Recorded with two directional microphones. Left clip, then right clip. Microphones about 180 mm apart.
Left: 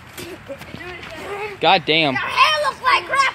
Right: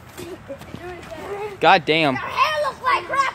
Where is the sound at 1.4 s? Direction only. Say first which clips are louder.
Right 1 dB; centre (ahead or behind).